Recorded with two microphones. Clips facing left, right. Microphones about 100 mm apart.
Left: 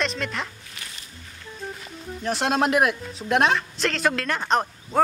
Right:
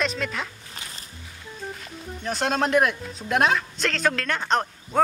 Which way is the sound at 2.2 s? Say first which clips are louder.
Left 2 dB; centre (ahead or behind).